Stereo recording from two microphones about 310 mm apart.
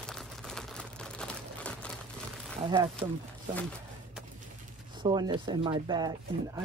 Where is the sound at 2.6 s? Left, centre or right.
Centre.